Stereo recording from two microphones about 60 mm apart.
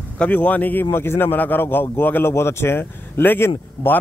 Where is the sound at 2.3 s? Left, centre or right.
Left.